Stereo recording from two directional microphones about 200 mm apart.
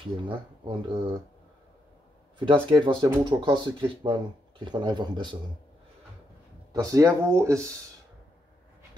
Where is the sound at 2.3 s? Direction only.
25° right (ahead or behind).